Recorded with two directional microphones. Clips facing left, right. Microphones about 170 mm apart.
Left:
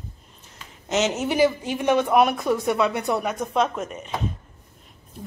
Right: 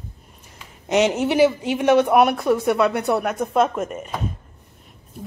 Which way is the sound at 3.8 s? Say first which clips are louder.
Right 5 dB; 50° right (ahead or behind).